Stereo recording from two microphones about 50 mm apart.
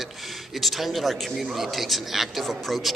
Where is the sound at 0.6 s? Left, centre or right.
Centre.